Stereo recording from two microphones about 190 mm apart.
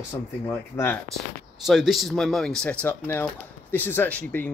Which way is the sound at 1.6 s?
Centre (ahead or behind).